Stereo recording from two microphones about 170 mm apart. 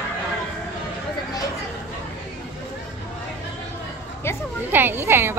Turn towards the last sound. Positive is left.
turn(degrees=-15)  # may be behind; listen again after turning